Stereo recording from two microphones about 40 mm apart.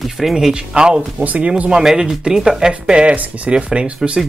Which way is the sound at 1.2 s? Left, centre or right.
Right.